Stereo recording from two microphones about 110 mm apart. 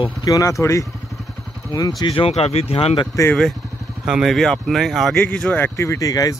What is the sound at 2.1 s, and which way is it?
Speech, 60° left (ahead or behind).